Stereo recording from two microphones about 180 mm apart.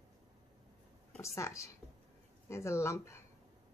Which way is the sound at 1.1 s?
15° left (ahead or behind).